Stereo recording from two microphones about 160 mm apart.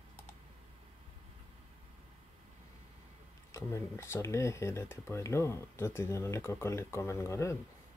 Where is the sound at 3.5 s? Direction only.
15° left (ahead or behind).